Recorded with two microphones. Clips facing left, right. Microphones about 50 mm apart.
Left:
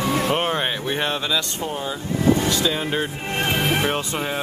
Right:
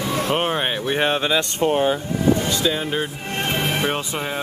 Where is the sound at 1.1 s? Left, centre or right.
Right.